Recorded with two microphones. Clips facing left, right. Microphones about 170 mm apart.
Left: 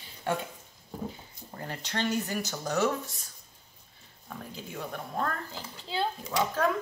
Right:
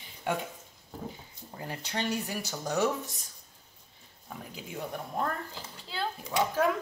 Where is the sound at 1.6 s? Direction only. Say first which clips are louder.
Left 2 dB; 10° right (ahead or behind).